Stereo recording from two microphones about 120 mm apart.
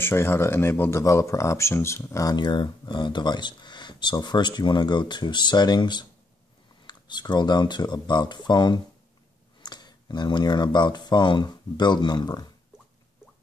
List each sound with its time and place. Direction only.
0.0 s speech: 20° left (ahead or behind)
2.3 s speech: 40° left (ahead or behind)